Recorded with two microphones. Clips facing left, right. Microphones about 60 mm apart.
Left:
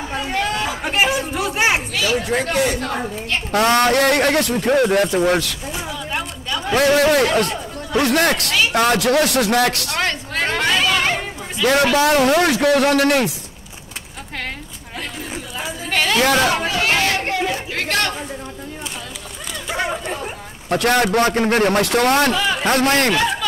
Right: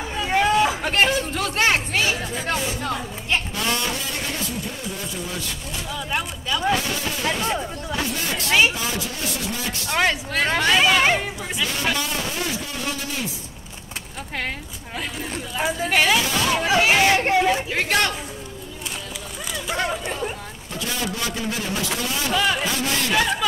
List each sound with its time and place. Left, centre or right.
0.3 s chatter: centre
0.8 s chatter: centre
2.2 s a man's voice: left
2.8 s a woman's voice: left
3.5 s a man's voice: left
6.7 s a man's voice: left
9.8 s speech: centre
10.8 s speech: centre
11.6 s a man's voice: left
15.5 s speech: centre
19.7 s chatter: centre
20.7 s a man's voice: left
22.3 s speech: centre
22.7 s speech: left